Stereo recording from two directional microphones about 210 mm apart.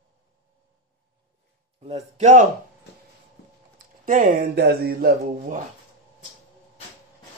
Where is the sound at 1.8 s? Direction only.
30° right (ahead or behind).